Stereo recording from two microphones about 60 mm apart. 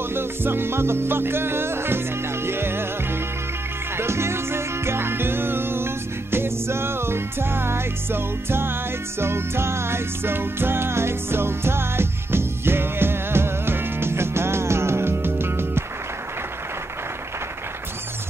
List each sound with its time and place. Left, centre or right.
0.1 s music: right